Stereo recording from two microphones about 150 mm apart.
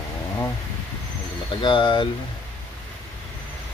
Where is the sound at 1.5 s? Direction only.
35° left (ahead or behind).